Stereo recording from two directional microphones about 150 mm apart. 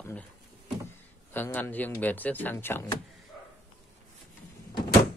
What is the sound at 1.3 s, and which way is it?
Speech, 10° left (ahead or behind).